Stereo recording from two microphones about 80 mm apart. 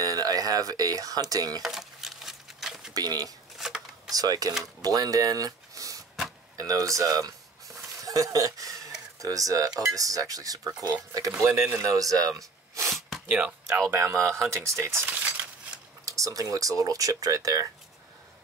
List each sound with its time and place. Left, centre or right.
0.0 s speech: right
1.6 s a sound: centre
2.9 s speech: right
6.5 s a sound: right
9.2 s speech: right
13.3 s speech: centre
13.8 s speech: right
15.0 s a sound: right
16.1 s speech: right